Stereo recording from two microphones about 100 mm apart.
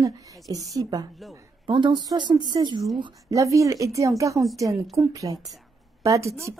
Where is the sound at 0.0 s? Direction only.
35° right (ahead or behind).